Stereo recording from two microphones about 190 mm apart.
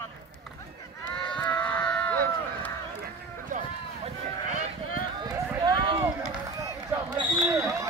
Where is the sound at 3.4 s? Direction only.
40° right (ahead or behind).